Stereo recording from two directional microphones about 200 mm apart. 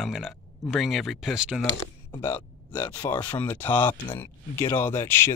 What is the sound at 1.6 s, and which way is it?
Speech, 25° left (ahead or behind).